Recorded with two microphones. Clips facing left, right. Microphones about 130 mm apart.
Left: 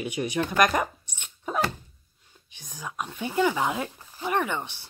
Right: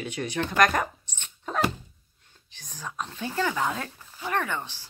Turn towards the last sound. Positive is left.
turn(degrees=20)  # may be behind; listen again after turning